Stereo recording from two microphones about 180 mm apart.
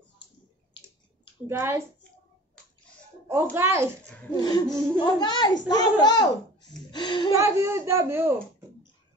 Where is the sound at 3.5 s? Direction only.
15° right (ahead or behind).